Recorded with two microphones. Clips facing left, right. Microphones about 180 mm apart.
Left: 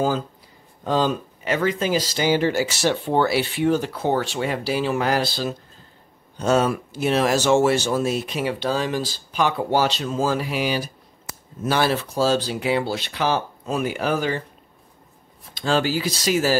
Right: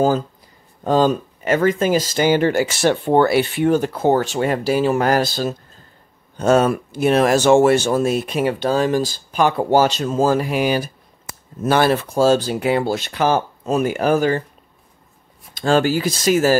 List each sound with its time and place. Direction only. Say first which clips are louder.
0.8 s speech: right 5 dB; 45° right (ahead or behind)
15.5 s speech: right 5 dB; 50° right (ahead or behind)